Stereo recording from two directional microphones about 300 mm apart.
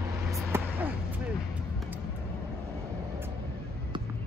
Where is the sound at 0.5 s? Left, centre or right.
Centre.